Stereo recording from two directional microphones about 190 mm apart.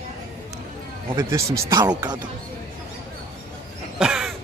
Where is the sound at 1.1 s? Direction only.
20° right (ahead or behind).